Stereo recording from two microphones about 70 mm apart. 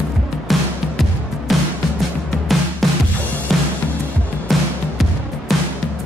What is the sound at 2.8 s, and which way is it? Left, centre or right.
Music, centre.